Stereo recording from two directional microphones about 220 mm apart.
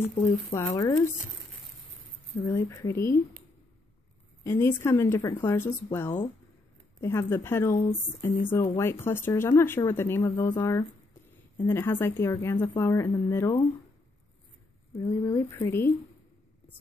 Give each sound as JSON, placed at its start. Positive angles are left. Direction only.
{"t": 0.6, "sound": "speech", "side_deg": 15}
{"t": 2.4, "sound": "speech", "side_deg": 15}
{"t": 4.4, "sound": "speech", "side_deg": 10}
{"t": 15.0, "sound": "speech", "side_deg": 15}